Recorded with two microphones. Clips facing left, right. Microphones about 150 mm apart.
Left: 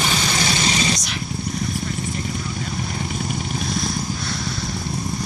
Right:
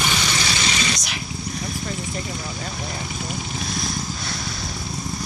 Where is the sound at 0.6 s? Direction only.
35° left (ahead or behind).